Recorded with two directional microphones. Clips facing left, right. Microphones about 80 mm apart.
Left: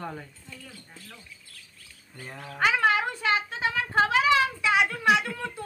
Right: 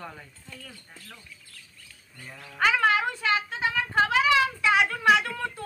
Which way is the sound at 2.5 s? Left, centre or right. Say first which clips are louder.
Right 1 dB; centre.